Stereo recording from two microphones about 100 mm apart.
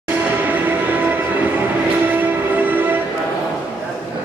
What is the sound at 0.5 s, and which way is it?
Music, 20° right (ahead or behind).